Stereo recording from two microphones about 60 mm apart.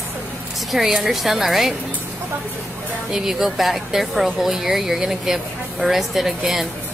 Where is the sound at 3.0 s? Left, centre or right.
Centre.